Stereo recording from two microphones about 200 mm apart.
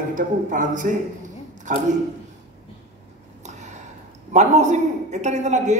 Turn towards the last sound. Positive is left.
turn(degrees=-35)  # may be behind; listen again after turning